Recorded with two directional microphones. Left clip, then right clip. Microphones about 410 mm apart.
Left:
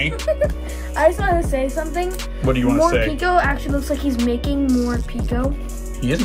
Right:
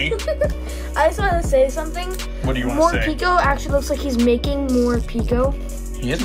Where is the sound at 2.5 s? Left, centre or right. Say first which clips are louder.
Left 1 dB; centre.